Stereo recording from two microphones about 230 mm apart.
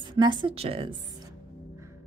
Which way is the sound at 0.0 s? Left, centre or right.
Right.